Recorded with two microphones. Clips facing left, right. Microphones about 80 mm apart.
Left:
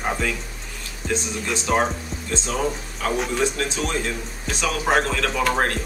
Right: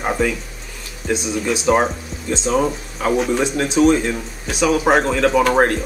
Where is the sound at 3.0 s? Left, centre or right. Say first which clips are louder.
Right 5 dB; right.